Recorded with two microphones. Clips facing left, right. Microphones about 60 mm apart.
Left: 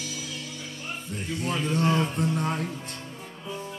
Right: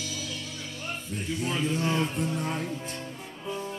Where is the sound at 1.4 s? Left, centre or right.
Left.